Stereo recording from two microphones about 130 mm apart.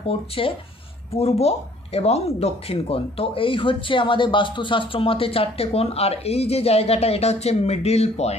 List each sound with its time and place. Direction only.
0.4 s speech: 45° left (ahead or behind)